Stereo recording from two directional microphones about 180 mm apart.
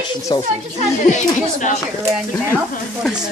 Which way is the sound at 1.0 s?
45° left (ahead or behind).